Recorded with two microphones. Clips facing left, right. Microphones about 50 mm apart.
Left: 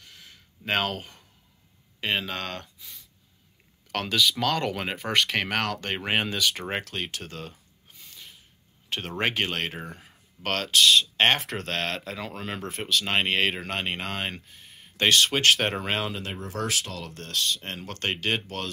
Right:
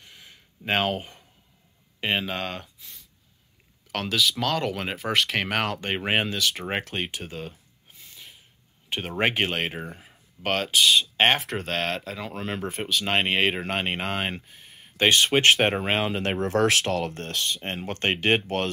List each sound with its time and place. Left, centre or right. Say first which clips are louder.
0.0 s a sound: right 1 dB; centre
2.0 s speech: right 2 dB; centre
3.9 s speech: even; centre
7.0 s a sound: right 2 dB; centre
8.8 s speech: right 3 dB; centre
14.4 s a sound: right 1 dB; centre
15.0 s speech: right 2 dB; right
16.2 s speech: right 9 dB; right
17.0 s speech: right 8 dB; right
17.3 s speech: even; right